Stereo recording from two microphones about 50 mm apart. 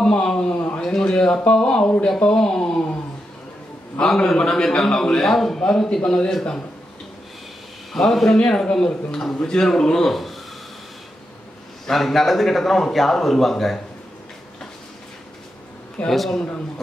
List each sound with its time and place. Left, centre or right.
0.0 s a man's voice: centre
4.0 s a man's voice: centre
7.9 s a man's voice: centre
8.4 s a man's voice: centre
11.8 s a man's voice: centre
16.1 s a man's voice: centre